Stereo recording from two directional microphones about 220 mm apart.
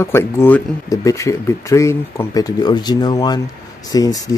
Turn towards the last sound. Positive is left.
turn(degrees=15)  # may be behind; listen again after turning